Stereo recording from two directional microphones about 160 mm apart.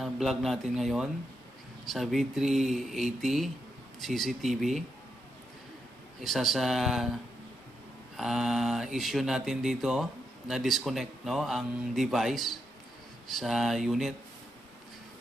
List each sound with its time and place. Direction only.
0.0 s speech: centre (ahead or behind)
6.2 s speech: centre (ahead or behind)
8.2 s speech: centre (ahead or behind)